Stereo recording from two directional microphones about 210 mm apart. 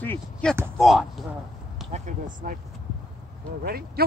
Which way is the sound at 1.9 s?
35° right (ahead or behind).